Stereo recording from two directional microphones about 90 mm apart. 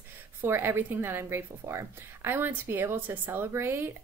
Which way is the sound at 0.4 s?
25° right (ahead or behind).